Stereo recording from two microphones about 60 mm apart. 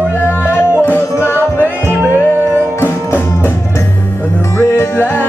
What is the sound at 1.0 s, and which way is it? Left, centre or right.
Music, left.